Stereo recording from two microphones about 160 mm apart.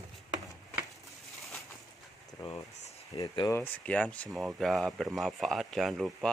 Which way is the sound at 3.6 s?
10° left (ahead or behind).